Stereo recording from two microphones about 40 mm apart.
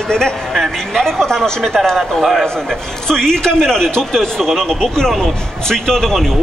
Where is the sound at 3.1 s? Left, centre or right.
Centre.